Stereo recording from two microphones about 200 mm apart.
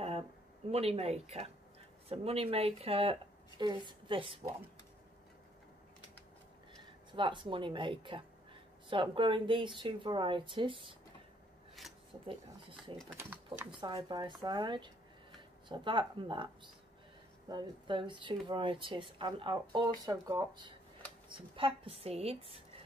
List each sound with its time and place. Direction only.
0.0 s a sound: 30° right (ahead or behind)
2.0 s speech: 30° right (ahead or behind)
7.1 s speech: 25° right (ahead or behind)
11.8 s a sound: centre (ahead or behind)
13.2 s speech: 10° right (ahead or behind)
13.7 s speech: 20° right (ahead or behind)